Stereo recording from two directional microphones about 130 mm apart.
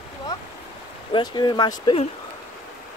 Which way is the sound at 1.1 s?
35° left (ahead or behind).